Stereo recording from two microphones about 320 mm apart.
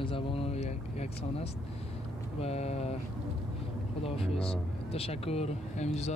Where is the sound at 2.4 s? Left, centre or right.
Centre.